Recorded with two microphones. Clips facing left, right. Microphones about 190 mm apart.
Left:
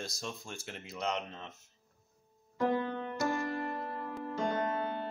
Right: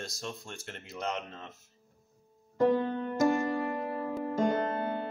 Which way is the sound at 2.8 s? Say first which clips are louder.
Right 6 dB; 45° right (ahead or behind).